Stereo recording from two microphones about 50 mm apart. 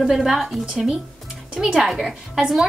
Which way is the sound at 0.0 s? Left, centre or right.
Centre.